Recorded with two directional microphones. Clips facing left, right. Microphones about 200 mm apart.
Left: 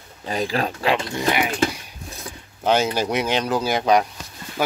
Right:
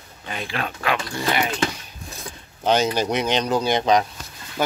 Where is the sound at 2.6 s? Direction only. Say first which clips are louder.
Even; 5° left (ahead or behind).